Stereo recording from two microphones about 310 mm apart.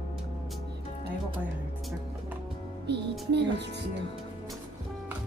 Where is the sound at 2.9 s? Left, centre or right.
Right.